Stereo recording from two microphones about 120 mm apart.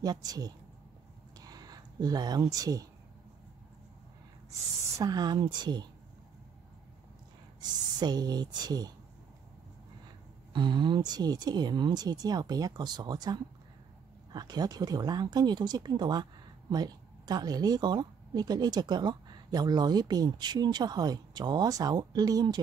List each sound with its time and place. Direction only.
0.0 s speech: 30° right (ahead or behind)
1.4 s a sound: 30° right (ahead or behind)
4.9 s speech: 35° right (ahead or behind)
8.0 s speech: 35° right (ahead or behind)
10.5 s speech: 40° right (ahead or behind)